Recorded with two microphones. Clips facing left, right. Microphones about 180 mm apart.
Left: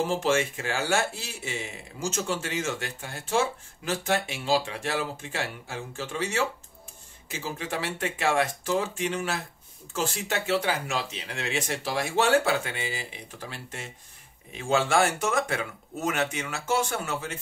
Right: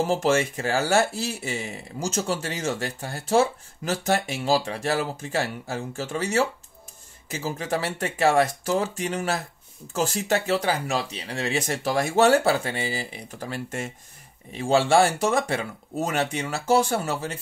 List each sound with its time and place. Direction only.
0.1 s speech: 40° right (ahead or behind)
14.5 s speech: 35° right (ahead or behind)